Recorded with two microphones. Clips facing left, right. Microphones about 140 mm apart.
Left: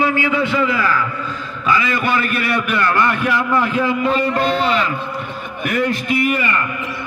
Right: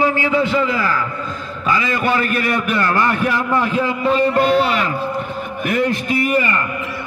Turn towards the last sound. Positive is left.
turn(degrees=-35)  # may be behind; listen again after turning